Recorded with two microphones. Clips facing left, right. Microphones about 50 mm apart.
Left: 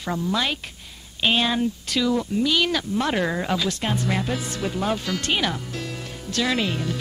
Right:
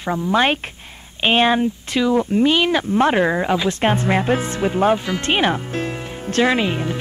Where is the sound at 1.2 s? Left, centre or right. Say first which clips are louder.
Right 6 dB; right.